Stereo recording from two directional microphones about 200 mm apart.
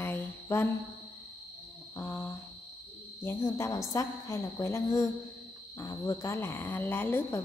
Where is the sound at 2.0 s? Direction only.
10° left (ahead or behind).